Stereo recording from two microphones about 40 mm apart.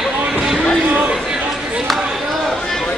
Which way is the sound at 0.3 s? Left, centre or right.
Centre.